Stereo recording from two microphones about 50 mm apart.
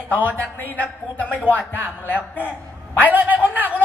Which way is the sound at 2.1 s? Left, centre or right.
Right.